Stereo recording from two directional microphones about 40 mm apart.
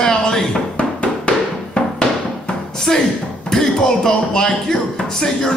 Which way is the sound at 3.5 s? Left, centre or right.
Centre.